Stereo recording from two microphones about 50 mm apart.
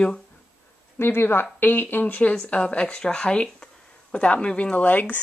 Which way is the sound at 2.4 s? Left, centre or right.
Left.